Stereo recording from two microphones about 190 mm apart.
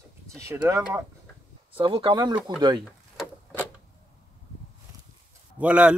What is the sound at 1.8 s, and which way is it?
Speech, 25° right (ahead or behind).